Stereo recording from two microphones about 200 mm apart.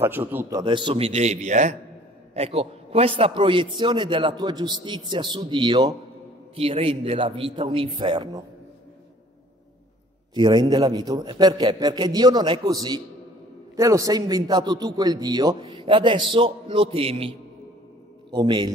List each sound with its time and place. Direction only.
0.0 s a man's voice: 10° right (ahead or behind)
10.3 s a man's voice: 20° right (ahead or behind)